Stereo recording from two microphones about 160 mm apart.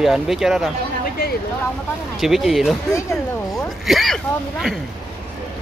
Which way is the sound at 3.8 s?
Centre (ahead or behind).